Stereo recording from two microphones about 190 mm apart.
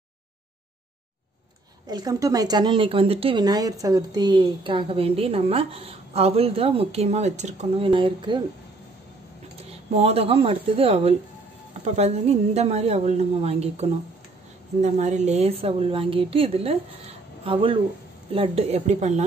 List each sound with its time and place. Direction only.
1.9 s a woman's voice: 20° right (ahead or behind)
9.7 s a woman's voice: 30° right (ahead or behind)